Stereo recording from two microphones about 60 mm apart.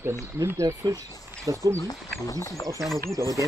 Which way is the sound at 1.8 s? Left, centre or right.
Left.